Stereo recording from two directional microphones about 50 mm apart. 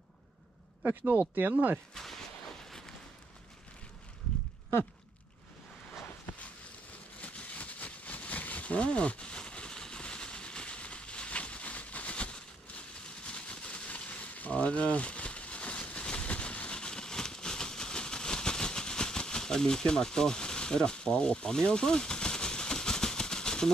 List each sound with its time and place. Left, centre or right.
0.8 s speech: right
2.0 s speech: centre
7.2 s a sound: left